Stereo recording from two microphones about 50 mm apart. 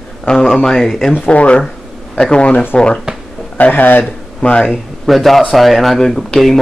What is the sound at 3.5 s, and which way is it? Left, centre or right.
Speech, left.